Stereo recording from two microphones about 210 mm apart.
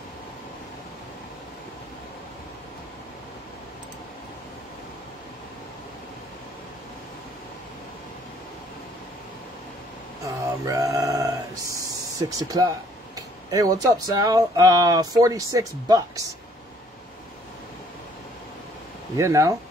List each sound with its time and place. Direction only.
10.2 s a sound: 15° right (ahead or behind)
11.8 s speech: 15° right (ahead or behind)
19.1 s speech: 15° right (ahead or behind)